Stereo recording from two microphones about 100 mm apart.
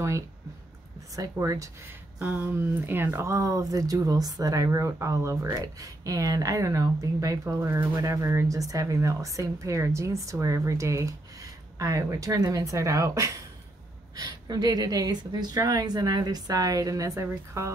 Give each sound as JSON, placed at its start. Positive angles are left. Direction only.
{"t": 1.1, "sound": "speech", "side_deg": -35}
{"t": 2.1, "sound": "speech", "side_deg": -15}